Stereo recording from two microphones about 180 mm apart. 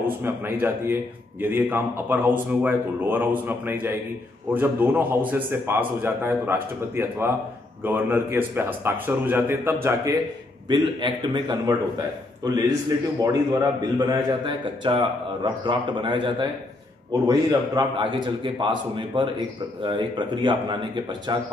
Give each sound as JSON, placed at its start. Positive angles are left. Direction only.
{"t": 0.0, "sound": "a man's voice", "side_deg": -10}
{"t": 10.7, "sound": "a man's voice", "side_deg": -25}
{"t": 13.2, "sound": "a man's voice", "side_deg": -20}